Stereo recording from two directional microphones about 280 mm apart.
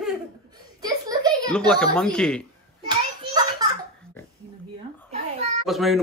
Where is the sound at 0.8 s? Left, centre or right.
Centre.